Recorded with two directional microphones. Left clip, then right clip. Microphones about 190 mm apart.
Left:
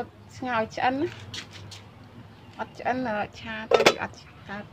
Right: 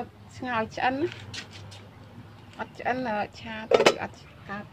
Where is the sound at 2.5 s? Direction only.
Centre (ahead or behind).